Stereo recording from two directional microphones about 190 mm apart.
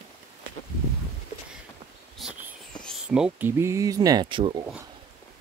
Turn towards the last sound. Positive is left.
turn(degrees=-25)  # may be behind; listen again after turning